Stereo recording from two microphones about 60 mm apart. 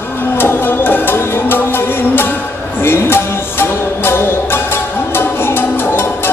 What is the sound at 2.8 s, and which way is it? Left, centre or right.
Music, left.